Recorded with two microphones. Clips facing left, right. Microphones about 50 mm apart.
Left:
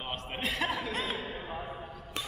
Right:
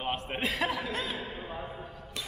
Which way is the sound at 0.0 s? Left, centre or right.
Centre.